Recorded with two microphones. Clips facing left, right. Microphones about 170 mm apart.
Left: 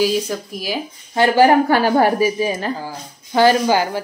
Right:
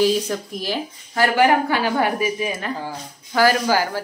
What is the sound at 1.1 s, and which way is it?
Speech, 25° left (ahead or behind).